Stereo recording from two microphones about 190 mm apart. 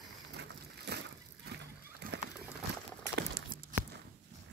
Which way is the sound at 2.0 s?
50° right (ahead or behind).